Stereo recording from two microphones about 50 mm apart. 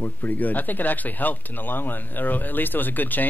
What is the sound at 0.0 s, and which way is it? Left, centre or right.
Speech, left.